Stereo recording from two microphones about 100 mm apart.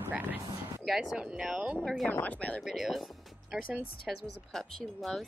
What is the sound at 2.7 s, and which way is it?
Speech, centre (ahead or behind).